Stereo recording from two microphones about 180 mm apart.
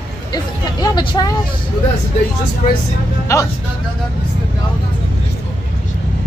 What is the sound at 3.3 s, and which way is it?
Speech, 15° left (ahead or behind).